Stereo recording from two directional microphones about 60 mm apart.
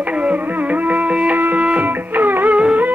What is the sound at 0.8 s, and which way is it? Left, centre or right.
Music, right.